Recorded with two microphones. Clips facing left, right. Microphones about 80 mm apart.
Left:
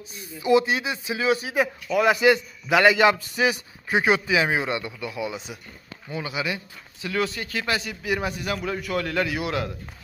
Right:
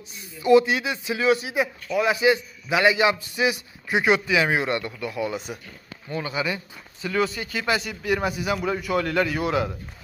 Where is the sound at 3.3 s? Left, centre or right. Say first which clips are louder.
Left 1 dB; left.